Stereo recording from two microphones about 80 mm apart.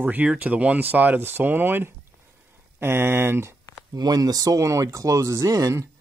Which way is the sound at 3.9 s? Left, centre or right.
Right.